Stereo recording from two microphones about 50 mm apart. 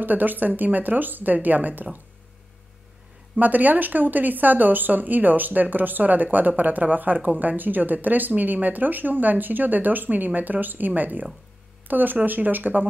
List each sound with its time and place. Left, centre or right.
0.0 s a woman's voice: right
3.3 s a woman's voice: right